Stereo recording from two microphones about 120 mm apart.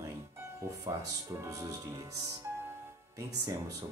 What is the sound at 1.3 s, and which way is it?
Speech, 30° right (ahead or behind).